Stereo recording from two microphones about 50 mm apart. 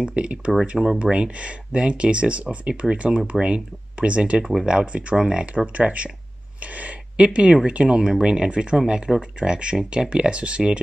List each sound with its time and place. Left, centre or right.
0.0 s speech: right
0.5 s speech: centre
1.1 s speech: centre